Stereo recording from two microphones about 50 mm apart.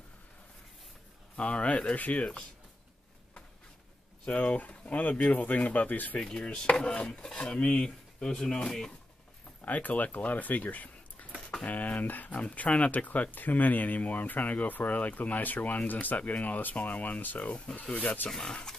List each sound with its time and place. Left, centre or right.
1.3 s dishes: left
2.0 s speech: left
4.3 s speech: left
6.1 s dishes: centre
7.2 s speech: centre
9.7 s speech: left
18.3 s speech: centre